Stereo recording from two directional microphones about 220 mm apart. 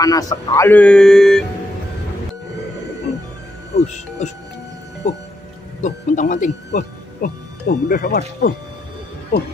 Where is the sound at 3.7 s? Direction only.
30° left (ahead or behind).